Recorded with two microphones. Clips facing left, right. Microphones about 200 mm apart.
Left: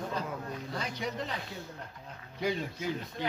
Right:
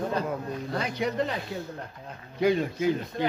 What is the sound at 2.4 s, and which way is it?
Speech, 65° right (ahead or behind).